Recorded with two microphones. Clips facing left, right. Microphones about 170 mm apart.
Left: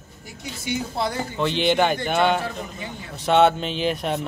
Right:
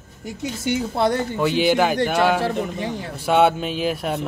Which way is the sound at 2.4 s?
80° right.